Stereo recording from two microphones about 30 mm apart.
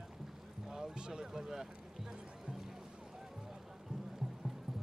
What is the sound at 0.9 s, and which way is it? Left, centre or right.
Speech, right.